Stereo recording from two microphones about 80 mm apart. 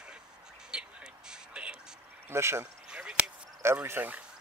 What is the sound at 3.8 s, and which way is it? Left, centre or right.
Speech, right.